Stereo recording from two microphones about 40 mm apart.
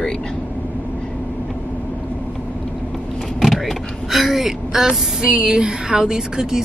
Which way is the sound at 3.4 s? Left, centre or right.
Centre.